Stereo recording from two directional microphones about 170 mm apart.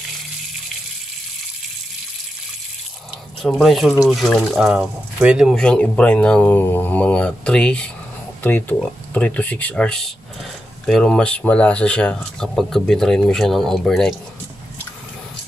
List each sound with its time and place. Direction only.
3.4 s speech: centre (ahead or behind)